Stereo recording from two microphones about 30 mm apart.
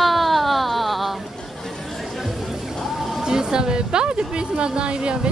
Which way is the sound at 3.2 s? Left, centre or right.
Right.